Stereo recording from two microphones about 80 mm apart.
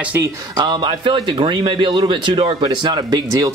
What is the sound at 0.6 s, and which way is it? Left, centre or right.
A man's voice, right.